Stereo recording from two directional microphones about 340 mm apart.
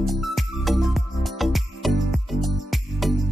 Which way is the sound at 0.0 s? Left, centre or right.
Centre.